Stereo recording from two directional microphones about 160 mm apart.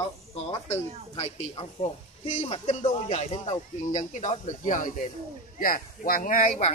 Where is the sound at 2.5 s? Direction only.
40° left (ahead or behind); by 6.5 s 55° left (ahead or behind).